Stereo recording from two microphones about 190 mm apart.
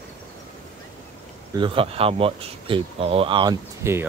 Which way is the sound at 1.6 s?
30° right (ahead or behind).